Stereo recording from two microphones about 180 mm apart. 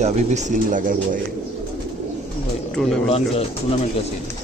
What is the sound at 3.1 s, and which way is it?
Speech, 35° left (ahead or behind).